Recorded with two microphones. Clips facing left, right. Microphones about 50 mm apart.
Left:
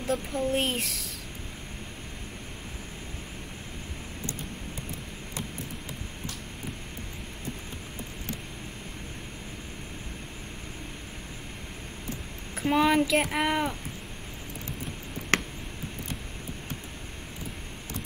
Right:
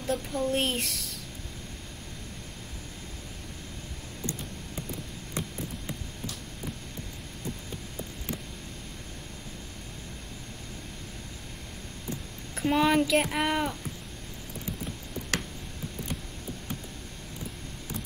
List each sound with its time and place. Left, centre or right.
0.0 s speech: centre
12.5 s speech: centre
15.3 s a sound: left